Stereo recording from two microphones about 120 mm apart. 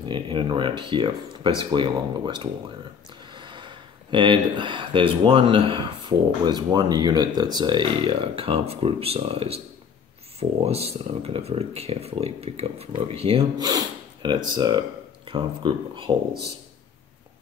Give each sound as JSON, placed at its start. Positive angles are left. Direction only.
{"t": 0.0, "sound": "speech", "side_deg": -40}
{"t": 10.6, "sound": "speech", "side_deg": -60}
{"t": 13.6, "sound": "speech", "side_deg": -35}